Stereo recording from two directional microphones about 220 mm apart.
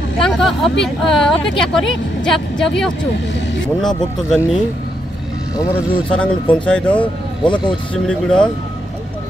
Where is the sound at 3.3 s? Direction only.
55° left (ahead or behind).